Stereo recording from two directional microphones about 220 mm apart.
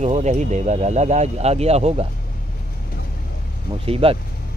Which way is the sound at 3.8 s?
25° right (ahead or behind).